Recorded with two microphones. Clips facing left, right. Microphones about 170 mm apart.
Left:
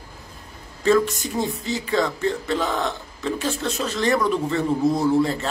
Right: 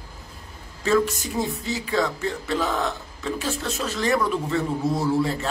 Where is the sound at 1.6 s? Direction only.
5° right (ahead or behind).